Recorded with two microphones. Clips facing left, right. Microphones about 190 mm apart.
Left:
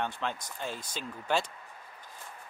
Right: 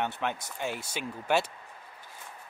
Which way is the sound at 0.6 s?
70° right (ahead or behind).